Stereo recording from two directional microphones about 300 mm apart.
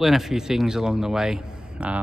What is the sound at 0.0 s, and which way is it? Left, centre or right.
Speech, centre.